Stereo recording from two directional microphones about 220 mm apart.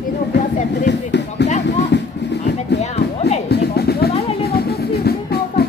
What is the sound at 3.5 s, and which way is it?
Music, 45° left (ahead or behind).